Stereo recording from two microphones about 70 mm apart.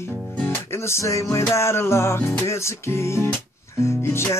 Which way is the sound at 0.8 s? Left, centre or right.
Left.